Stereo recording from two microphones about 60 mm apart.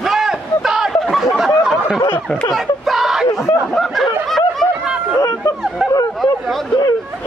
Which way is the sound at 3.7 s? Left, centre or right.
Centre.